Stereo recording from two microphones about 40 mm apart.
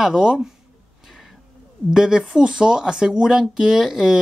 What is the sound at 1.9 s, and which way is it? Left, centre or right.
Speech, centre.